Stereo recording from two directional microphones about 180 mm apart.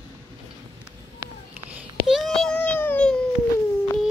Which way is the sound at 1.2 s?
10° right (ahead or behind).